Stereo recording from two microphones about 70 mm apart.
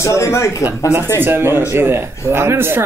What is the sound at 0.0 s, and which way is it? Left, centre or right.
Speech, left.